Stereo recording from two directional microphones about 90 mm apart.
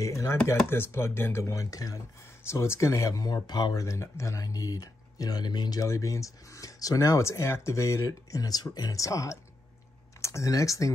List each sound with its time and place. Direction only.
0.0 s speech: 35° left (ahead or behind)
2.4 s speech: 30° left (ahead or behind)